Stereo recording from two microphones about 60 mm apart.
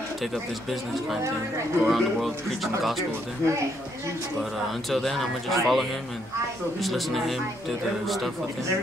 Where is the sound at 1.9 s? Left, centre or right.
Centre.